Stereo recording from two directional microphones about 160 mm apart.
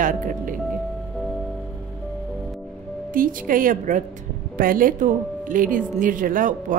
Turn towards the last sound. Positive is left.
turn(degrees=-60)  # may be behind; listen again after turning